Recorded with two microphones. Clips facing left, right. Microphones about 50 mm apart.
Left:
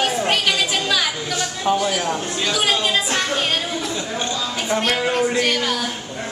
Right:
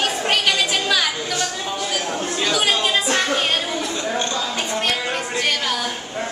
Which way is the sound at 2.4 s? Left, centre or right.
Centre.